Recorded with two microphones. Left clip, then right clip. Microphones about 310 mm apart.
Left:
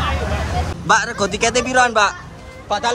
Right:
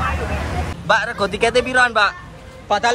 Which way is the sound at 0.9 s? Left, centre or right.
Centre.